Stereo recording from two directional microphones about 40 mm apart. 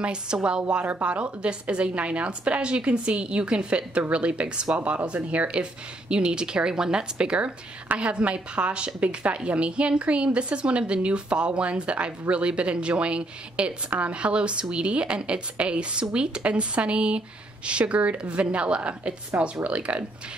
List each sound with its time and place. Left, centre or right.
0.0 s a woman's voice: right
4.7 s a woman's voice: right